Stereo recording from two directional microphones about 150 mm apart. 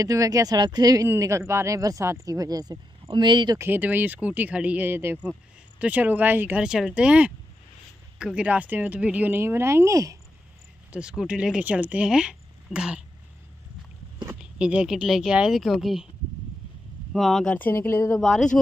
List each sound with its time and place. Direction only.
0.0 s speech: 25° right (ahead or behind)
3.5 s speech: 15° right (ahead or behind)
10.9 s speech: 5° right (ahead or behind)
14.4 s speech: 5° right (ahead or behind)
17.1 s speech: centre (ahead or behind)
18.2 s speech: 5° left (ahead or behind)